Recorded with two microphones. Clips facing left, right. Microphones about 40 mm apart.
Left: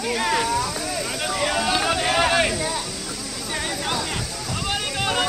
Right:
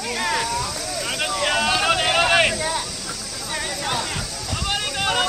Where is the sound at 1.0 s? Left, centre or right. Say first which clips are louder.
Right 3 dB; right.